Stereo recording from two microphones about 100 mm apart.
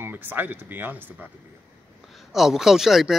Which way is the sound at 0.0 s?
20° right (ahead or behind).